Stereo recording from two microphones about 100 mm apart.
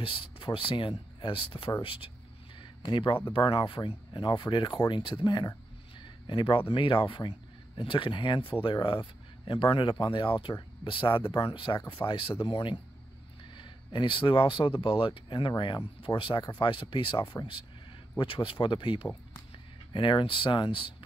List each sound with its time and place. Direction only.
0.0 s speech: 60° left (ahead or behind)
2.6 s a sound: 55° left (ahead or behind)
3.3 s speech: 60° left (ahead or behind)
5.9 s a sound: 55° left (ahead or behind)
6.7 s speech: 60° left (ahead or behind)
12.4 s speech: 60° left (ahead or behind)